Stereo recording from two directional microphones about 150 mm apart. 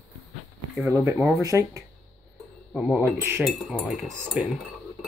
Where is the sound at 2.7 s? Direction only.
5° right (ahead or behind).